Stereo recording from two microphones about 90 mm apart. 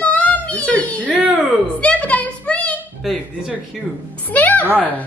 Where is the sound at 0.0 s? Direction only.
15° left (ahead or behind).